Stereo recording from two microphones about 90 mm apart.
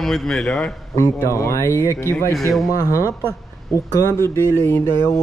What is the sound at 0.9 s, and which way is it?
Speech, 35° left (ahead or behind).